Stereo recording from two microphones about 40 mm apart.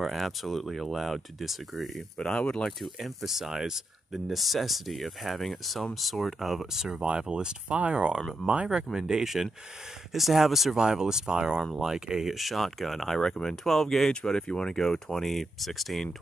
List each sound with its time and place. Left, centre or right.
0.0 s speech: centre
2.1 s speech: left
2.8 s speech: centre
10.8 s speech: centre
14.3 s speech: left; by 16.2 s centre